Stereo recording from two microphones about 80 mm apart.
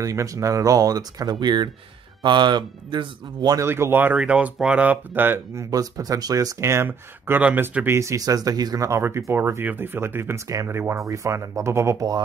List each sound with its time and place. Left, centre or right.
0.0 s speech: right
3.5 s speech: right
4.2 s speech: centre
5.6 s speech: right
6.9 s speech: right
8.4 s speech: right
9.3 s speech: right